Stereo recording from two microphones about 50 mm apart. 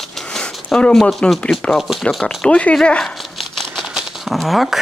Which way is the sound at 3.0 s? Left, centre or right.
Centre.